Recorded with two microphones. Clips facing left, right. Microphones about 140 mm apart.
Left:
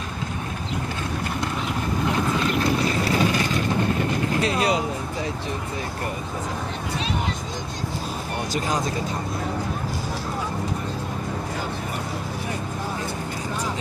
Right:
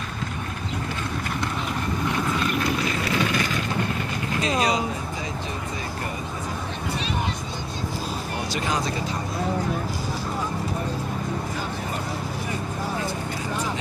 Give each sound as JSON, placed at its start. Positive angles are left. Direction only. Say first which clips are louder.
{"t": 2.8, "sound": "vehicle", "louder": "left 3 dB", "side_deg": 35}
{"t": 4.4, "sound": "vehicle", "louder": "right 1 dB", "side_deg": 60}